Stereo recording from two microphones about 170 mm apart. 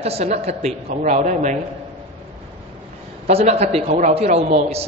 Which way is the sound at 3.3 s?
40° right (ahead or behind).